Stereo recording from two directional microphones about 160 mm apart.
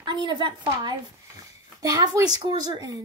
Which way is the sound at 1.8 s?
25° right (ahead or behind).